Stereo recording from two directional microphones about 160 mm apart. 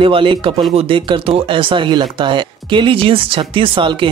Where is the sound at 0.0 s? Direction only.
35° right (ahead or behind).